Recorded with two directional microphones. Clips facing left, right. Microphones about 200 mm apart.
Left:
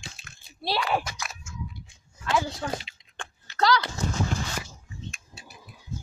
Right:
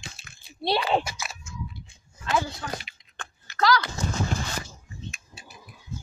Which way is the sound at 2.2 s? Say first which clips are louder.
Left 1 dB; 25° left (ahead or behind).